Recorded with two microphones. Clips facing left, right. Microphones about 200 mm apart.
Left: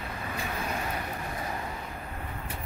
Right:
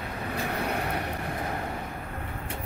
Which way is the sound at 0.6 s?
65° right (ahead or behind).